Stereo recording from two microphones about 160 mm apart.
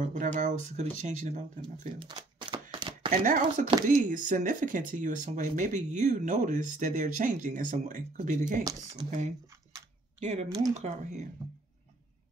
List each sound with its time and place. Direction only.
0.0 s speech: 55° right (ahead or behind)
2.0 s a sound: 30° right (ahead or behind)
3.1 s speech: 55° right (ahead or behind)
10.2 s speech: 40° right (ahead or behind)